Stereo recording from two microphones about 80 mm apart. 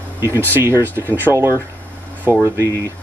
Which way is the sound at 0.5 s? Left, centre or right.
Right.